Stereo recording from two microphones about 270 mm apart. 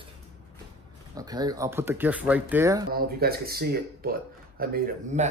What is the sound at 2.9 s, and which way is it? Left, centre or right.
A man's voice, right.